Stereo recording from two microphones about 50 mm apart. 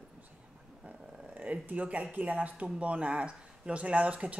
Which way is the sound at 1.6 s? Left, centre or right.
Right.